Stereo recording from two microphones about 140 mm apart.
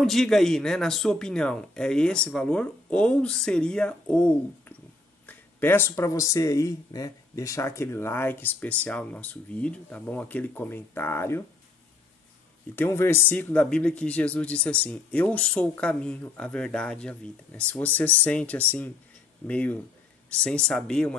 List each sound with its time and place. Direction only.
0.0 s speech: centre (ahead or behind); by 11.4 s 15° left (ahead or behind)
12.7 s speech: 15° left (ahead or behind)